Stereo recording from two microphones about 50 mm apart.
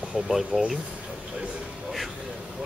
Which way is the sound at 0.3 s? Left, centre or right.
Centre.